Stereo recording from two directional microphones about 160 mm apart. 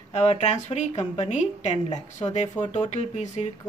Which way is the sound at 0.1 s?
45° left (ahead or behind).